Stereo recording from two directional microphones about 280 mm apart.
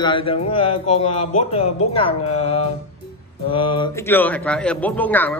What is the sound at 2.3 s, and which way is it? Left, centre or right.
Mantra, left.